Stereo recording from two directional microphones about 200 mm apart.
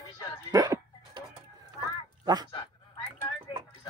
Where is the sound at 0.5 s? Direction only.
20° right (ahead or behind).